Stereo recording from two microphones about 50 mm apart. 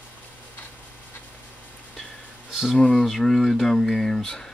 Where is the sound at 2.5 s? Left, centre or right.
Centre.